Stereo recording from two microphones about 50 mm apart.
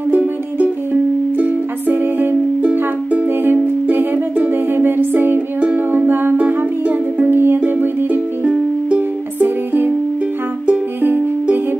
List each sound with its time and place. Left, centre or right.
1.4 s music: right
7.6 s music: right